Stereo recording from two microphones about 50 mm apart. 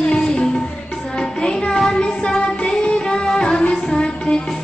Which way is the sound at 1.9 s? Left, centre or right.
Centre.